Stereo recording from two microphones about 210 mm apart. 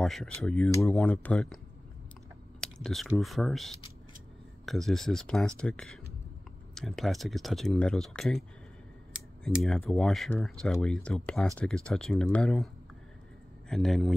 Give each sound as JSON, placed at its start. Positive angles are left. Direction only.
{"t": 0.0, "sound": "speech", "side_deg": 0}
{"t": 2.6, "sound": "speech", "side_deg": 0}
{"t": 13.7, "sound": "speech", "side_deg": 0}